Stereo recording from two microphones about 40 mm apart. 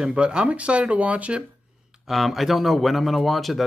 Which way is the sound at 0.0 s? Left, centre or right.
Right.